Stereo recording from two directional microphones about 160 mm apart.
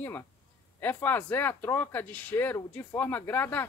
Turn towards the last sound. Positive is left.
turn(degrees=15)  # may be behind; listen again after turning